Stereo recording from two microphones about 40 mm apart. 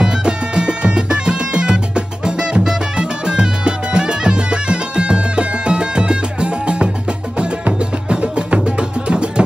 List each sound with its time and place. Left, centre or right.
0.0 s music: right
8.1 s music: right